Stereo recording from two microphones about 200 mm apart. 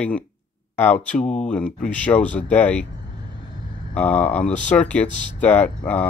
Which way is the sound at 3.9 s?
5° left (ahead or behind).